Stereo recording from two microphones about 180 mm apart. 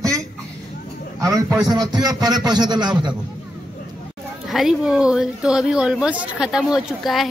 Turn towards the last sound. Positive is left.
turn(degrees=0)  # may be behind; listen again after turning